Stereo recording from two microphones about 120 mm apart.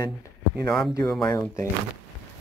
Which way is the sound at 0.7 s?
Centre (ahead or behind).